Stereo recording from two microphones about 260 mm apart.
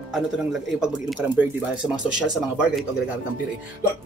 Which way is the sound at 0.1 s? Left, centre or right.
Centre.